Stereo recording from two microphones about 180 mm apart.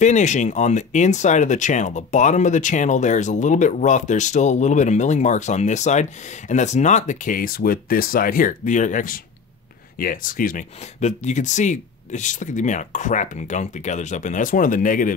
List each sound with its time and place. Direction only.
0.0 s speech: 40° left (ahead or behind)